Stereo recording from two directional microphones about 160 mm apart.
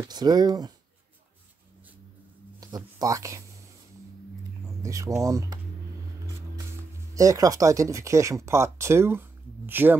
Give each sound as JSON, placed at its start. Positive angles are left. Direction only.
{"t": 0.0, "sound": "speech", "side_deg": -25}
{"t": 2.6, "sound": "speech", "side_deg": -20}
{"t": 4.6, "sound": "speech", "side_deg": -20}
{"t": 7.2, "sound": "speech", "side_deg": -20}